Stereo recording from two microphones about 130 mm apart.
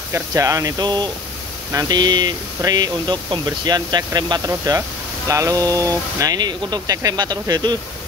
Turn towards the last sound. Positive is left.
turn(degrees=-30)  # may be behind; listen again after turning